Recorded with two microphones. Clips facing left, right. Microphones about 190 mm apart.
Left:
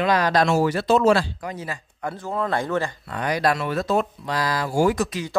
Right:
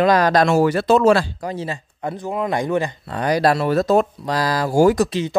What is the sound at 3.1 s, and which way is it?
Speech, 35° right (ahead or behind).